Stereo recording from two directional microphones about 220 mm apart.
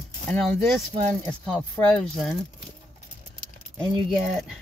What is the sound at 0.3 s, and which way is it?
Speech, 5° left (ahead or behind).